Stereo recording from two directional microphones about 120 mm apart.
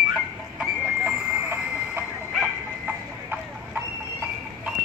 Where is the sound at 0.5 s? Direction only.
10° right (ahead or behind).